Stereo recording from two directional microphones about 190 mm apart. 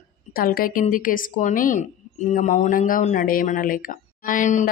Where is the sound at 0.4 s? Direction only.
50° left (ahead or behind).